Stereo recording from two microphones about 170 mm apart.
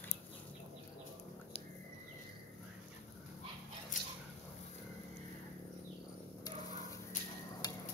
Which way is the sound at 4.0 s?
50° left (ahead or behind).